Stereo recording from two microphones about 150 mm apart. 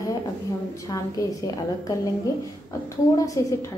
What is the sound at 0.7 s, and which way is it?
A woman's voice, 20° left (ahead or behind).